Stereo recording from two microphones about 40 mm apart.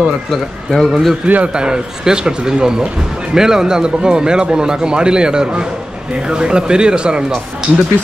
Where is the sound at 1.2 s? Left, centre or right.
Right.